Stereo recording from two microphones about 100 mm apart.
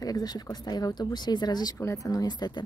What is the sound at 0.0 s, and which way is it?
Speech, 40° left (ahead or behind).